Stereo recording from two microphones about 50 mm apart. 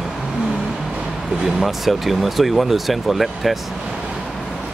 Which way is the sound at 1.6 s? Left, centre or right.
Centre.